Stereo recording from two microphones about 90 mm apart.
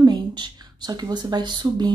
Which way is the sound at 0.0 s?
55° right (ahead or behind).